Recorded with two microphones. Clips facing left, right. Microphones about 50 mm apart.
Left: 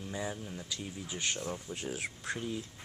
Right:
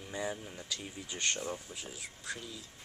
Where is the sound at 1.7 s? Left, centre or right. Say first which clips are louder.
Left 7 dB; left.